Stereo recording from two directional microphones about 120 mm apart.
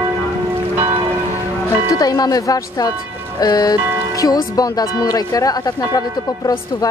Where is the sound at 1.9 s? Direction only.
30° left (ahead or behind).